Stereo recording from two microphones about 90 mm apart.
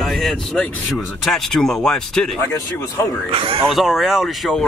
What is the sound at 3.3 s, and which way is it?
Speech, 85° right.